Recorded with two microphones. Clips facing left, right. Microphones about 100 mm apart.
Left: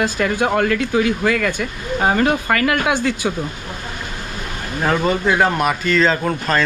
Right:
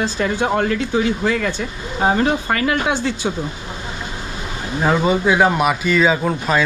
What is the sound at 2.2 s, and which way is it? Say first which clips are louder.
Speech: left 1 dB; 65° left (ahead or behind).